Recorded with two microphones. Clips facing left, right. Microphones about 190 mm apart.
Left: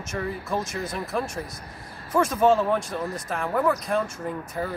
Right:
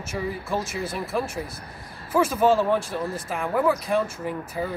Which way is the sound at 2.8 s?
30° right (ahead or behind).